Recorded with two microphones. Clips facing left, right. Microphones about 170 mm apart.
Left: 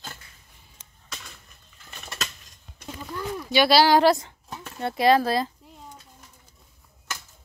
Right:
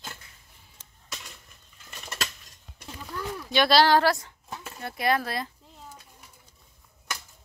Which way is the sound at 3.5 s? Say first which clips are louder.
Left 2 dB; 5° left (ahead or behind).